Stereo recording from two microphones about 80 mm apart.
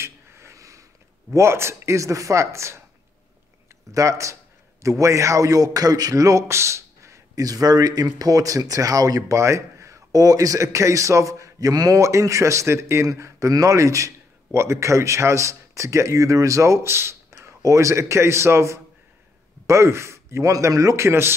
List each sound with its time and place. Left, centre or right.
0.0 s a sound: right
1.3 s a man's voice: right
3.9 s a man's voice: right